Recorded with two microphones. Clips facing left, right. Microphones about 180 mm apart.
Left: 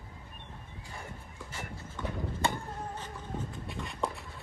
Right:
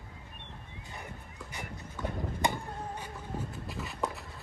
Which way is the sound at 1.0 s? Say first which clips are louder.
Even; 15° right (ahead or behind).